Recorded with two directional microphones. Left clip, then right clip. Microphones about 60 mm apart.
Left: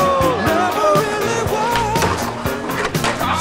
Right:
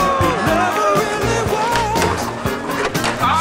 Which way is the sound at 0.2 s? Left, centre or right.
Centre.